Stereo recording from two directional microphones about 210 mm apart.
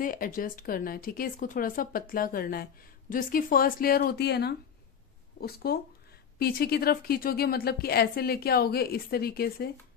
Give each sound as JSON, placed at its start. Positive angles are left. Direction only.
{"t": 0.0, "sound": "speech", "side_deg": 40}